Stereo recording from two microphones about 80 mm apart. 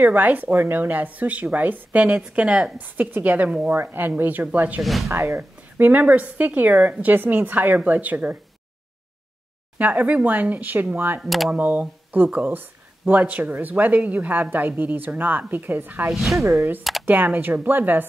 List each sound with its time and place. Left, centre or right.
0.0 s speech: centre
5.0 s speech: right
9.8 s speech: centre
11.1 s speech: centre
11.5 s speech: centre
16.1 s speech: centre
16.3 s speech: right
17.0 s speech: right